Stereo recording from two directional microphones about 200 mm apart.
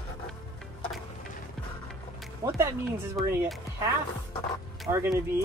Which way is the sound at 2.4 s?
15° right (ahead or behind).